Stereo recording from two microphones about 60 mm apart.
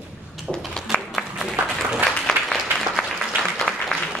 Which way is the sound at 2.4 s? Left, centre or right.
Right.